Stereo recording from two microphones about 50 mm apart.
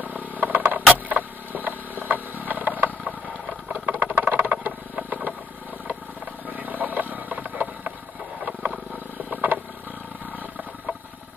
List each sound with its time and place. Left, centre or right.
0.0 s a sound: right
3.6 s vehicle: right
4.2 s a sound: right
4.9 s vehicle: right
6.4 s vehicle: right
8.4 s wild animals: right
9.3 s vehicle: right